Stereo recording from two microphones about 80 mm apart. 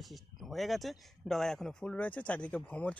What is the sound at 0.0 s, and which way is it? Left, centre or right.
Speech, centre.